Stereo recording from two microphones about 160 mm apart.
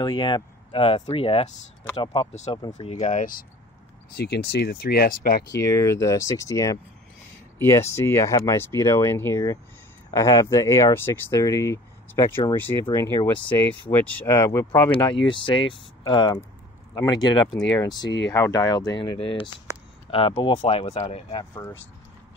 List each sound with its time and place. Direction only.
0.0 s speech: 30° left (ahead or behind); by 3.4 s 55° left (ahead or behind)
4.2 s speech: 90° left; by 5.4 s 70° left (ahead or behind)
5.5 s speech: 20° left (ahead or behind)
13.3 s speech: 10° left (ahead or behind)
14.2 s speech: 20° left (ahead or behind)